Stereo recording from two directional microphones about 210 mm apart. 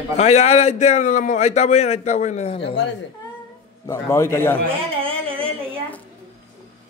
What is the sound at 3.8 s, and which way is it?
Speech, 15° left (ahead or behind).